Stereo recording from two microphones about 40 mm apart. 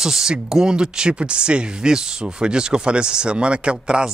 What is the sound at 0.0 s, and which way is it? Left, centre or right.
Speech, centre.